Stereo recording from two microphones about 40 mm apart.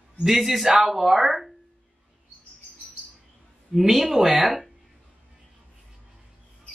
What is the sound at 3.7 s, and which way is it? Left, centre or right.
Speech, centre.